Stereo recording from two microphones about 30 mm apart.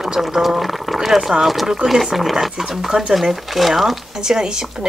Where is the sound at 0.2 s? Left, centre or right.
Centre.